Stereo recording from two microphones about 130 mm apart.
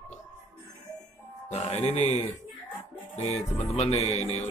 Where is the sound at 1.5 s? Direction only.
55° left (ahead or behind).